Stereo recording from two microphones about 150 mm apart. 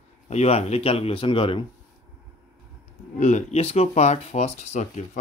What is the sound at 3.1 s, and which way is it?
Speech, 50° left (ahead or behind).